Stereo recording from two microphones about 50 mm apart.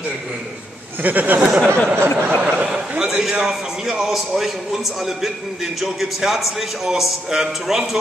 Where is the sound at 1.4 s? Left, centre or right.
Centre.